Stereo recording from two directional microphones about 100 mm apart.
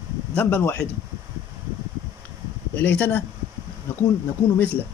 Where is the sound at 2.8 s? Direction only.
20° left (ahead or behind).